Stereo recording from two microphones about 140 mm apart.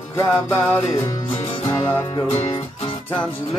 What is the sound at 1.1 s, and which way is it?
Music, 25° left (ahead or behind).